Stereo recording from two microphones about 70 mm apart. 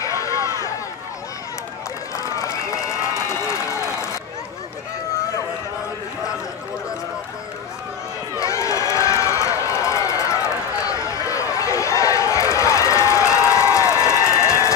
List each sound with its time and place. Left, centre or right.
0.0 s run: left
2.1 s run: left
8.4 s run: left